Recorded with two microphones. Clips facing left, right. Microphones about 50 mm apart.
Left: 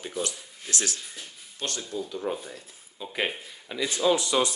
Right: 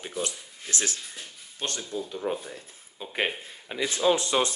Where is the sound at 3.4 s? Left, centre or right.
Right.